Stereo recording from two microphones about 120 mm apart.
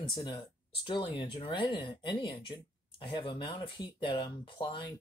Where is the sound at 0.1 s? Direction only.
40° left (ahead or behind).